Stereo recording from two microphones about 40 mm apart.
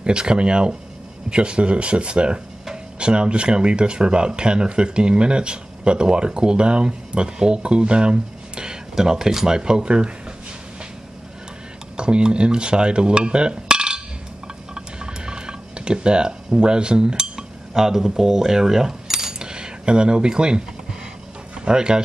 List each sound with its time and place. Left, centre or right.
0.0 s speech: right
9.6 s speech: right
12.0 s a sound: right
21.5 s speech: right